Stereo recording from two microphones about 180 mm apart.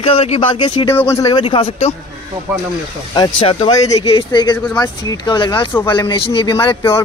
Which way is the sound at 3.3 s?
30° left (ahead or behind).